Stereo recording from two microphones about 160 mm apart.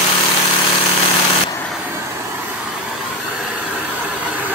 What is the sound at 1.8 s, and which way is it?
Vehicle, 15° right (ahead or behind).